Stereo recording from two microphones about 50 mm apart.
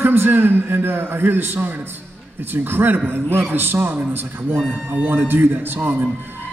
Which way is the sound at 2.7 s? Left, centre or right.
Right.